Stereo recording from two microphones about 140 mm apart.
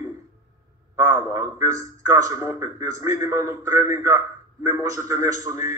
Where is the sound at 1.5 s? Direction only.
20° right (ahead or behind).